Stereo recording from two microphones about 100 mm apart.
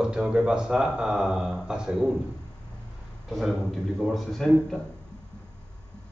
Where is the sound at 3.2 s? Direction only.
Centre (ahead or behind).